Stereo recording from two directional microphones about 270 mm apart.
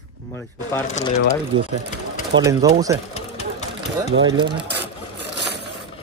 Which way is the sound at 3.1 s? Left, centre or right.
Left.